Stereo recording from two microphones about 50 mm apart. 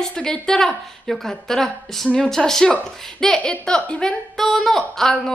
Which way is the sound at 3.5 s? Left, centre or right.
Left.